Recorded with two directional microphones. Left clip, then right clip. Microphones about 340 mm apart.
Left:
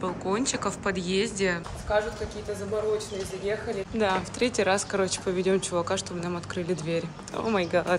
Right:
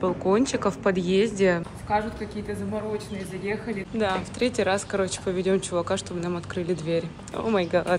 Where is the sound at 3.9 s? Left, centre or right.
Centre.